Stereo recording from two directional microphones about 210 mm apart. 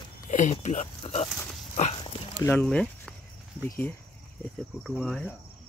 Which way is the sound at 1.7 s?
30° left (ahead or behind).